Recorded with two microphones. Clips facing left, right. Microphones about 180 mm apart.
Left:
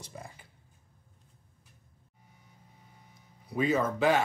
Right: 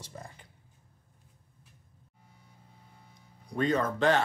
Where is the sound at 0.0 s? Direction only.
10° left (ahead or behind).